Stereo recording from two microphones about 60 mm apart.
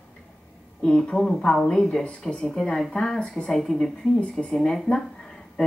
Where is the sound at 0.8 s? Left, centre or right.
Centre.